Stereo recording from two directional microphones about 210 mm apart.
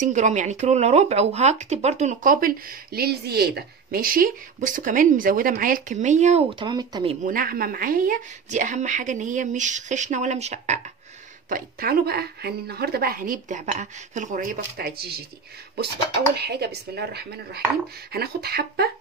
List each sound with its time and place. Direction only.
0.0 s speech: 35° right (ahead or behind)
7.2 s speech: 45° right (ahead or behind)
11.4 s speech: 45° right (ahead or behind)
16.3 s speech: 50° right (ahead or behind)